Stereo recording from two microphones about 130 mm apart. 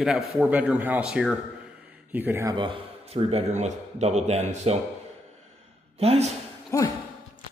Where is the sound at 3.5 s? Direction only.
60° right (ahead or behind).